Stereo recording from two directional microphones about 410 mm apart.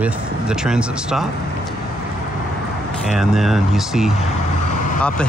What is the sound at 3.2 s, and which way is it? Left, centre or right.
Speech, centre.